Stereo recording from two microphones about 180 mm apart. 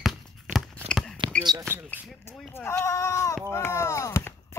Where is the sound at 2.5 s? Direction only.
15° left (ahead or behind).